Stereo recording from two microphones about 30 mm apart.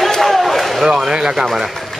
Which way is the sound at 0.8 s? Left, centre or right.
Centre.